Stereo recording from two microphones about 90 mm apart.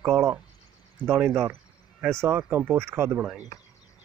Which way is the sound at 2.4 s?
25° right (ahead or behind).